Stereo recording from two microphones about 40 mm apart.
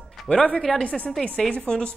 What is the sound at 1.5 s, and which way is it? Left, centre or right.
Speech, left.